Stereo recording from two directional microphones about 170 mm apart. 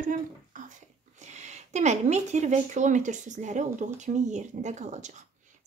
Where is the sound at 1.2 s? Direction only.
45° right (ahead or behind).